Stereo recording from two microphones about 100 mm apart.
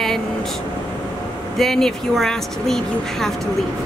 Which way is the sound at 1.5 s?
5° left (ahead or behind).